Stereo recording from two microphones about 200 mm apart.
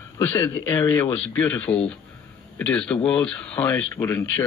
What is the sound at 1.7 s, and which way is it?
Speech, 30° left (ahead or behind).